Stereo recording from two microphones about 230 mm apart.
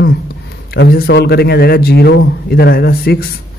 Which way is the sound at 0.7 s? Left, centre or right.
Left.